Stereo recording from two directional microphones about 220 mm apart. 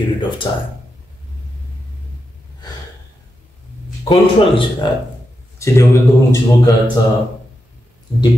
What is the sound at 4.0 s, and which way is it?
A man's voice, 20° left (ahead or behind).